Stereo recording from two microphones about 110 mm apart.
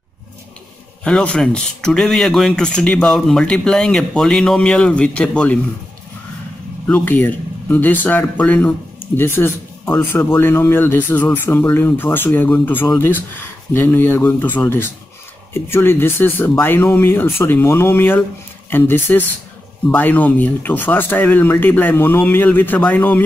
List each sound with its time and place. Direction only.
1.0 s speech: 10° left (ahead or behind)
6.9 s speech: 15° left (ahead or behind)